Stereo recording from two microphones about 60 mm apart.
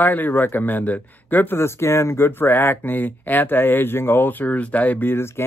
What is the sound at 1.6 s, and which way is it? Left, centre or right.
Speech, left.